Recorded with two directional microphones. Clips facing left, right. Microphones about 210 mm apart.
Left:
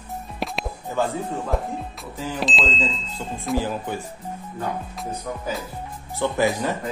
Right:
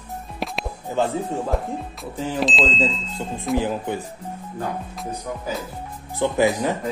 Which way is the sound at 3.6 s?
20° right (ahead or behind).